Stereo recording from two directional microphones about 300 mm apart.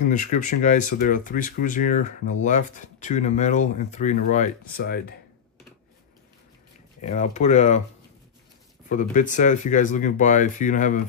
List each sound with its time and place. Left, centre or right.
0.0 s speech: left
7.0 s speech: left
8.8 s speech: left